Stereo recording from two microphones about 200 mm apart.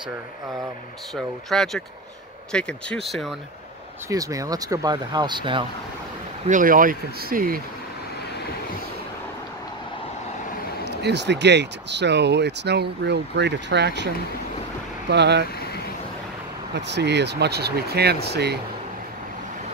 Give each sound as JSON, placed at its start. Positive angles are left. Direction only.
{"t": 1.1, "sound": "speech", "side_deg": 0}
{"t": 4.1, "sound": "speech", "side_deg": -15}
{"t": 6.4, "sound": "speech", "side_deg": -40}
{"t": 10.9, "sound": "speech", "side_deg": -55}
{"t": 16.8, "sound": "speech", "side_deg": -60}